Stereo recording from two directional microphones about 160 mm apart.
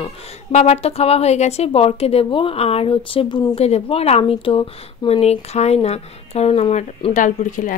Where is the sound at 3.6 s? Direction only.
40° left (ahead or behind).